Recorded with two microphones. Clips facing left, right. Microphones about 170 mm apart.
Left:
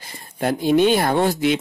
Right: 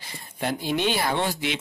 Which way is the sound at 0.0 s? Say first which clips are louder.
Left 6 dB; 45° left (ahead or behind).